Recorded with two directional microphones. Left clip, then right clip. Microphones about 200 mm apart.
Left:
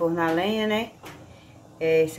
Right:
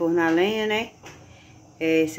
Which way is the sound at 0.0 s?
40° right (ahead or behind).